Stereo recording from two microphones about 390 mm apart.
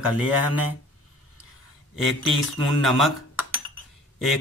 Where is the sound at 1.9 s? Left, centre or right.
Centre.